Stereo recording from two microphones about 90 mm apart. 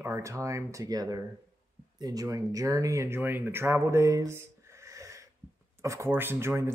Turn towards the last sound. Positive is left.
turn(degrees=-30)  # may be behind; listen again after turning